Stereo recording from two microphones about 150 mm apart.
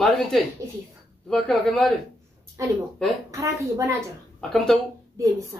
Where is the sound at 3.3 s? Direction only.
20° right (ahead or behind).